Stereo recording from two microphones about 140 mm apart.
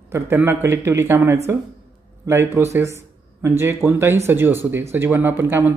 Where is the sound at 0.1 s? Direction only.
15° right (ahead or behind).